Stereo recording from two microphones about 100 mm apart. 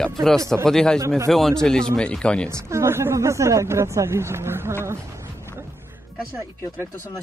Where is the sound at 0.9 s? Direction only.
30° right (ahead or behind).